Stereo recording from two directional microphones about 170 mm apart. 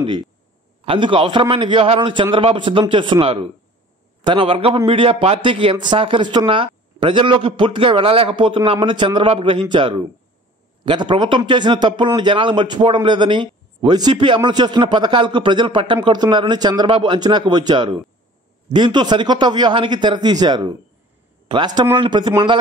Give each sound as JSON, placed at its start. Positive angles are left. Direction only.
{"t": 0.0, "sound": "a man's voice", "side_deg": -30}